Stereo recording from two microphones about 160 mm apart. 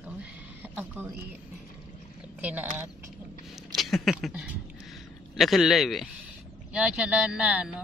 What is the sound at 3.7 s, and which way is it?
Speech, centre (ahead or behind).